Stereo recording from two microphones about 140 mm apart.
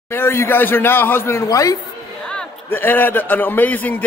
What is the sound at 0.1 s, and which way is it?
A man's voice, 15° left (ahead or behind).